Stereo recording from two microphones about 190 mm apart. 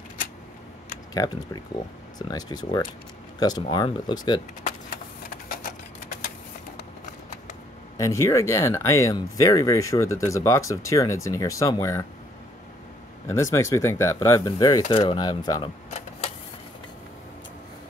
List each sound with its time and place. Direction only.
1.1 s speech: 20° left (ahead or behind)
4.6 s a sound: 50° left (ahead or behind)
8.0 s speech: 15° left (ahead or behind)
13.3 s speech: 15° left (ahead or behind)